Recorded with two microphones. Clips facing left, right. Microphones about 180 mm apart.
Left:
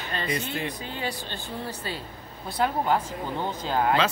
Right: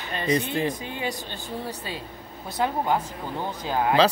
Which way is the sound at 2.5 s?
15° right (ahead or behind).